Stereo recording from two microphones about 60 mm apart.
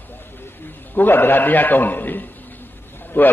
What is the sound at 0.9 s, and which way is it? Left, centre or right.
A man's voice, left.